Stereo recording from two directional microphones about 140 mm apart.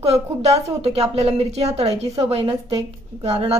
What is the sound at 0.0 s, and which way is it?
A woman's voice, 50° right (ahead or behind).